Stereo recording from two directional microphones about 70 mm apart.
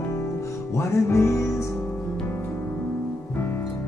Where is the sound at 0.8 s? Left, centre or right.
Left.